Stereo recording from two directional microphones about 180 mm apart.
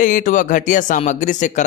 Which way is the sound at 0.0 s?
45° left (ahead or behind).